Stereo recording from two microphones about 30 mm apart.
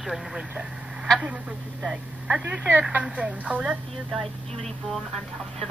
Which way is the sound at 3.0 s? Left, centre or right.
Right.